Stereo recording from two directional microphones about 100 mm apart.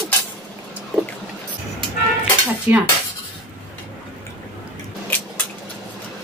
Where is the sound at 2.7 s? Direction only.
15° right (ahead or behind).